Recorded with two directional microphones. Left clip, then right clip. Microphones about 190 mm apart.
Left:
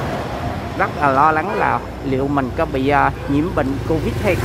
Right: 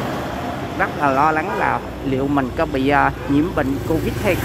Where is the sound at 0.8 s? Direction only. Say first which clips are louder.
Left 2 dB; 5° left (ahead or behind).